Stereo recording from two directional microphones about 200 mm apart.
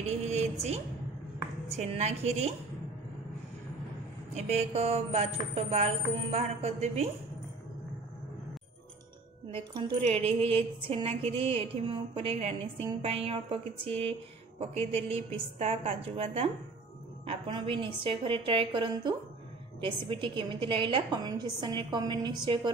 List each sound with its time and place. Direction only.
0.1 s a sound: 30° right (ahead or behind)
1.8 s speech: 35° right (ahead or behind)
4.3 s speech: 30° right (ahead or behind)
9.5 s music: 25° right (ahead or behind)